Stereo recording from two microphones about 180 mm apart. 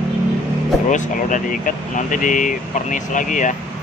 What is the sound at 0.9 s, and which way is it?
Speech, 45° left (ahead or behind).